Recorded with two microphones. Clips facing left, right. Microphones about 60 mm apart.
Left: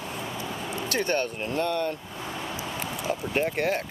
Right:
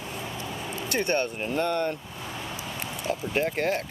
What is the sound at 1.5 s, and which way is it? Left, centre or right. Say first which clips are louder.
Speech: right 1 dB; right.